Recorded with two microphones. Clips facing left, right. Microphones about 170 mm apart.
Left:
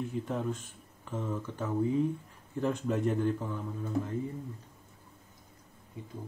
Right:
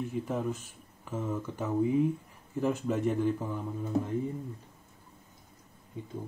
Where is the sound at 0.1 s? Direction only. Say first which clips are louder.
Right 1 dB; 5° right (ahead or behind).